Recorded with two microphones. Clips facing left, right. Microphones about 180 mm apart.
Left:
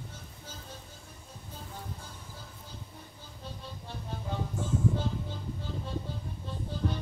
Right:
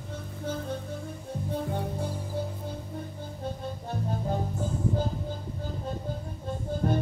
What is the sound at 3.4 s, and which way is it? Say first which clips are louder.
Music: right 8 dB; 50° right (ahead or behind).